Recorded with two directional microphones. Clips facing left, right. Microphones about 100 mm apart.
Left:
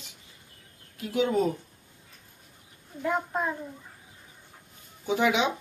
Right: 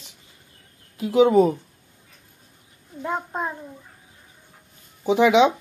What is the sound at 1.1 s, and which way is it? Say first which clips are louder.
Speech: right 9 dB; 90° right.